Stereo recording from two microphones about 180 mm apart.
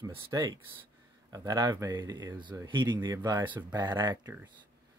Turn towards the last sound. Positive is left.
turn(degrees=-15)  # may be behind; listen again after turning